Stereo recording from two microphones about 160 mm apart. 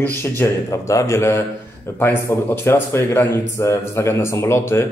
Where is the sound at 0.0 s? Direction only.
15° left (ahead or behind).